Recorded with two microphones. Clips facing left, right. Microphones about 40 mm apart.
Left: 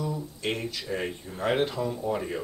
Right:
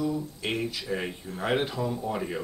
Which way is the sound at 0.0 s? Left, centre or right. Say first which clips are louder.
Right 2 dB; centre.